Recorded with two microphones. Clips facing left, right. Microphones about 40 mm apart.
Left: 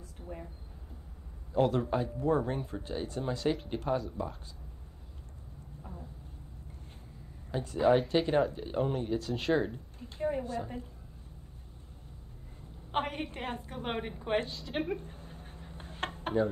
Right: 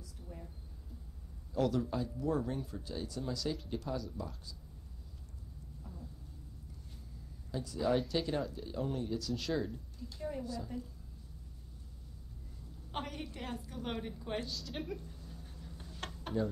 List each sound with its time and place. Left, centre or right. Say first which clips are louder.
0.2 s a sound: left 8 dB; left
1.5 s speech: left 5 dB; left
7.5 s speech: left 7 dB; left
12.9 s a woman's voice: left 8 dB; left